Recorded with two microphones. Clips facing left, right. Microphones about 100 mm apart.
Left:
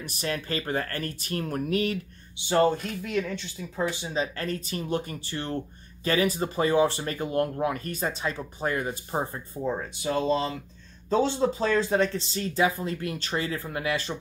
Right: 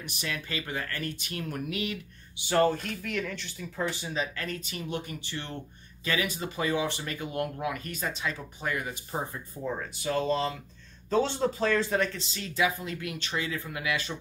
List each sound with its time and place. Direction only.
0.0 s speech: 40° left (ahead or behind)
2.3 s speech: 25° left (ahead or behind)
4.1 s speech: 35° left (ahead or behind)
12.2 s speech: 35° left (ahead or behind)